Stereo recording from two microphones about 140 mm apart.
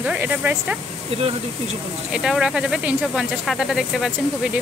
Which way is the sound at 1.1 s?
45° right (ahead or behind).